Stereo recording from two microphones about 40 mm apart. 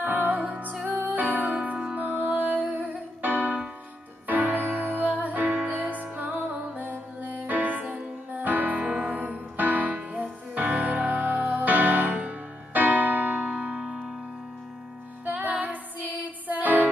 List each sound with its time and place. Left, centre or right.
0.0 s music: right
8.7 s music: right
9.1 s music: right
13.5 s music: right
13.7 s music: centre
15.2 s music: right